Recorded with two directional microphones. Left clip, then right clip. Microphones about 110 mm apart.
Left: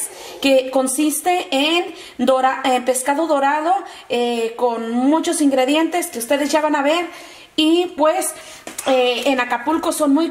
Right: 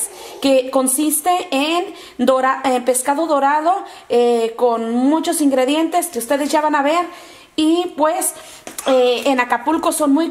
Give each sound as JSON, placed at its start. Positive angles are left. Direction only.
{"t": 0.4, "sound": "a woman's voice", "side_deg": -30}